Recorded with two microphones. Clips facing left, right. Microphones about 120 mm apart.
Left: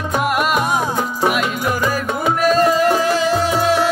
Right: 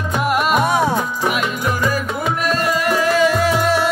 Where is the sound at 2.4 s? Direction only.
35° left (ahead or behind).